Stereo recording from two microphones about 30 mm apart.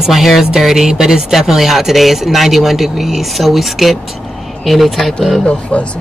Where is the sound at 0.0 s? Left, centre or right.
Centre.